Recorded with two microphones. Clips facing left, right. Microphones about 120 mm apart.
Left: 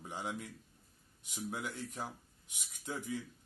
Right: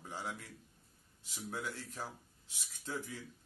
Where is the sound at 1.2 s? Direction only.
20° left (ahead or behind).